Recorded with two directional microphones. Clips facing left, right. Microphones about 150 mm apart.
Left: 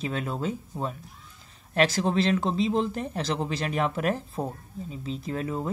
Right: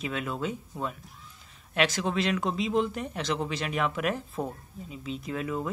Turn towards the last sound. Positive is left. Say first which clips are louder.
# left 1 dB
turn(degrees=35)  # may be behind; listen again after turning